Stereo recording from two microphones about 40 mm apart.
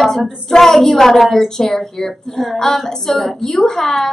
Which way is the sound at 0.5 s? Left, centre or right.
Centre.